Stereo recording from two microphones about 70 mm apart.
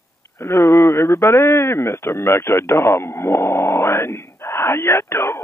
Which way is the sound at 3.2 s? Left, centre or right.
Left.